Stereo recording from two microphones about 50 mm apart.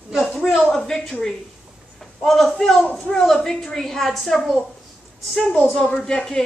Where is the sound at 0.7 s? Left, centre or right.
Centre.